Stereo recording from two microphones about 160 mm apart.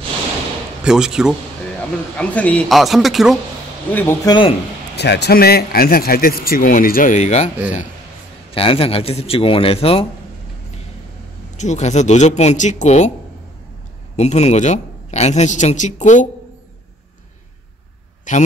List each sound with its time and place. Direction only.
0.8 s speech: 5° right (ahead or behind)
2.1 s speech: 10° left (ahead or behind)
3.9 s speech: 15° left (ahead or behind)
4.3 s a man's voice: 30° left (ahead or behind)
4.9 s a man's voice: 90° left; by 10.0 s 35° left (ahead or behind)
11.5 s a woman's voice: 45° left (ahead or behind)
14.1 s a woman's voice: 45° left (ahead or behind)
18.3 s a woman's voice: 55° left (ahead or behind)